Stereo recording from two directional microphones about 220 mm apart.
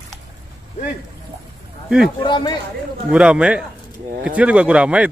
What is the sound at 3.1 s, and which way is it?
Speech, 5° right (ahead or behind).